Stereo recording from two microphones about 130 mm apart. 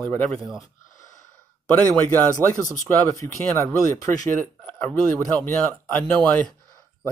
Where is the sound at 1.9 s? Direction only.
15° left (ahead or behind).